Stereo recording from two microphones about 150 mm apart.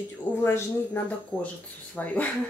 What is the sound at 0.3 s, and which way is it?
Speech, 15° left (ahead or behind).